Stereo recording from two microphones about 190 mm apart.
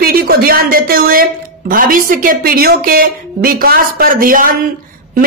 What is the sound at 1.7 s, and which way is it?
A man's voice, 45° right (ahead or behind).